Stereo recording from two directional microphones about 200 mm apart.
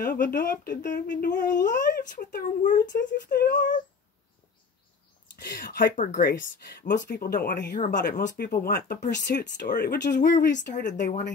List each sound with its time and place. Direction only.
0.0 s speech: 45° left (ahead or behind)
3.0 s speech: 55° left (ahead or behind)
5.4 s speech: 50° left (ahead or behind)
7.9 s speech: 55° left (ahead or behind)